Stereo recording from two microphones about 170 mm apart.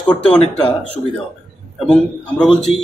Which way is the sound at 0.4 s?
35° left (ahead or behind).